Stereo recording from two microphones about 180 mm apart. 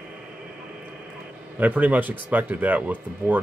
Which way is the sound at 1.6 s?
10° right (ahead or behind).